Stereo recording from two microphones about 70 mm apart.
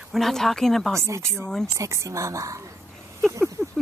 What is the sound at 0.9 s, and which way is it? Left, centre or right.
Speech, right.